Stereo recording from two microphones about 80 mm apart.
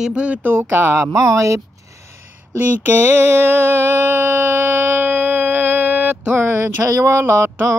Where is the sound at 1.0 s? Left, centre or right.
Right.